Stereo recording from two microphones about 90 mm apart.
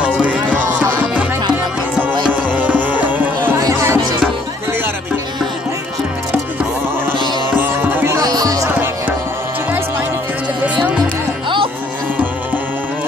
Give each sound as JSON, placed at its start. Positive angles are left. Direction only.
{"t": 0.0, "sound": "music", "side_deg": -15}
{"t": 2.2, "sound": "music", "side_deg": -20}
{"t": 3.5, "sound": "music", "side_deg": -35}
{"t": 7.5, "sound": "music", "side_deg": -20}
{"t": 8.2, "sound": "music", "side_deg": -45}
{"t": 11.4, "sound": "music", "side_deg": -65}